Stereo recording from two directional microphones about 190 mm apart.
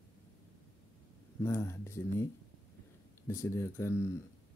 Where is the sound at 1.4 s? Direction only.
15° left (ahead or behind).